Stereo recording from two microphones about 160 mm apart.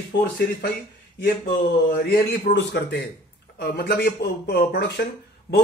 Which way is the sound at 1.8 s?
80° left.